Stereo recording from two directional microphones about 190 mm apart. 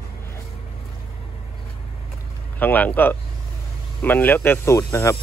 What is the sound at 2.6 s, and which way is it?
Speech, 10° left (ahead or behind).